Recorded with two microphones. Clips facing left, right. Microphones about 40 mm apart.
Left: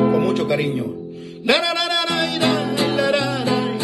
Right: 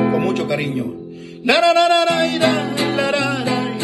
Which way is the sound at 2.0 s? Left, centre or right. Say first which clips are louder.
Right 4 dB; right.